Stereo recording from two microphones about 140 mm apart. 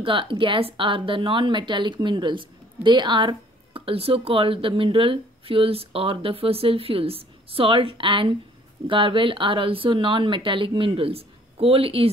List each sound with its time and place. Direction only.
0.0 s speech: 40° right (ahead or behind)